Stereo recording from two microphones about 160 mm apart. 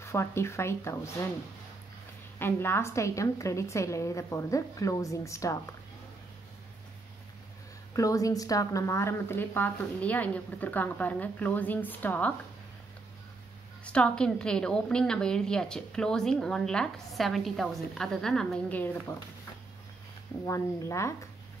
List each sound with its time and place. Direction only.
0.0 s a woman's voice: 15° left (ahead or behind)
2.3 s a woman's voice: 15° left (ahead or behind)
7.9 s a woman's voice: 20° left (ahead or behind)
13.8 s a woman's voice: 5° left (ahead or behind)
20.4 s a woman's voice: 20° left (ahead or behind)